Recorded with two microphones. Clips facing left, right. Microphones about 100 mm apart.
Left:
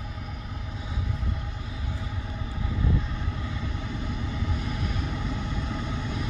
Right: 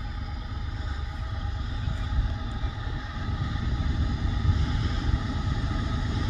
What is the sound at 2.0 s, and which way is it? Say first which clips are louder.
Vehicle: even; 20° right (ahead or behind).